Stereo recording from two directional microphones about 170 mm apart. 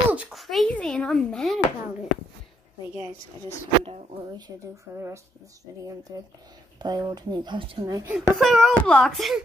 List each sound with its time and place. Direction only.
0.1 s a sound: 5° right (ahead or behind)
4.2 s a woman's voice: 25° right (ahead or behind)
8.4 s speech: centre (ahead or behind)